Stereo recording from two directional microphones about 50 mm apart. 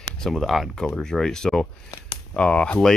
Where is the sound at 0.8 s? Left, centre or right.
Centre.